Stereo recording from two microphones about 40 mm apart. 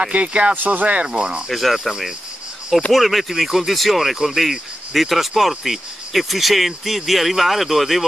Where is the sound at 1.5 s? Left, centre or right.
Centre.